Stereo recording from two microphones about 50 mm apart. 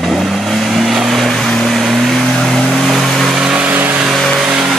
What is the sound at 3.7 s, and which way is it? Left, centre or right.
Vehicle, right.